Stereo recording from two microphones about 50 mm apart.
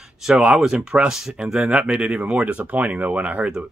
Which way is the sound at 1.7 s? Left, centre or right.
Right.